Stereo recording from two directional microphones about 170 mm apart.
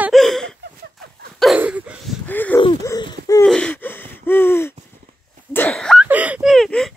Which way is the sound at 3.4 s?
5° left (ahead or behind).